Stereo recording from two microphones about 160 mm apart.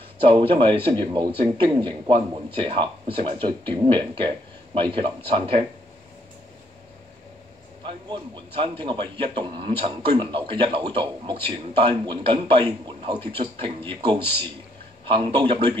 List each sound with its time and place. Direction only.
0.2 s speech: 35° right (ahead or behind)
7.8 s speech: 30° right (ahead or behind)